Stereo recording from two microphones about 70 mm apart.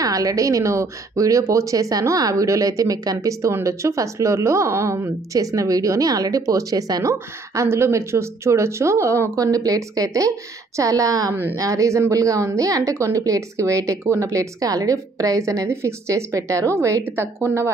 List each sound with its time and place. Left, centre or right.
0.0 s a woman's voice: right
15.7 s speech: right
17.0 s a woman's voice: right